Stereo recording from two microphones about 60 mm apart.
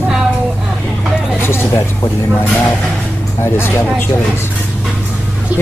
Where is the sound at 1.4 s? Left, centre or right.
Left.